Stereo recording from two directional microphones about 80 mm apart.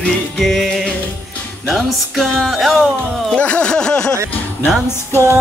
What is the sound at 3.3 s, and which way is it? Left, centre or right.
Music, centre.